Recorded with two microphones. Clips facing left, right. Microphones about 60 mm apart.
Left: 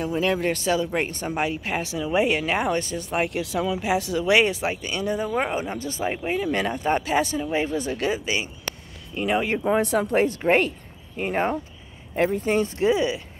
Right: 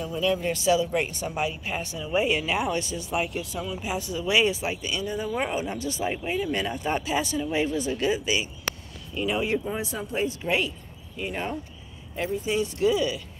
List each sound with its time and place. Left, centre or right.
0.0 s a woman's voice: left
3.3 s speech: left
5.0 s speech: left
5.3 s a woman's voice: left
7.3 s speech: left
7.7 s a woman's voice: left